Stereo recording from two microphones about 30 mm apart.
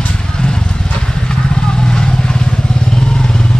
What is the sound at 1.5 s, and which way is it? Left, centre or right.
Vehicle, left.